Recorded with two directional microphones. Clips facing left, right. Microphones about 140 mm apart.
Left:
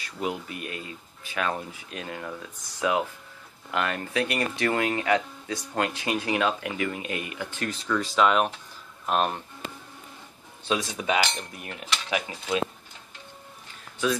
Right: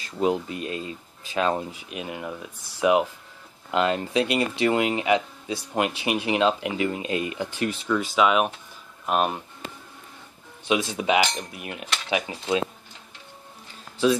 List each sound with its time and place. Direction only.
0.2 s speech: 25° right (ahead or behind)
7.5 s cutlery: 15° right (ahead or behind)
8.0 s cutlery: 5° right (ahead or behind)
10.8 s cutlery: 25° right (ahead or behind)
12.1 s speech: 25° right (ahead or behind)